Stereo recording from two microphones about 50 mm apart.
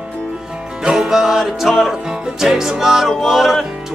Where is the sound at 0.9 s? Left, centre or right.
Centre.